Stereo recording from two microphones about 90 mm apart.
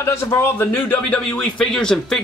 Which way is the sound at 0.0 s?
30° left (ahead or behind).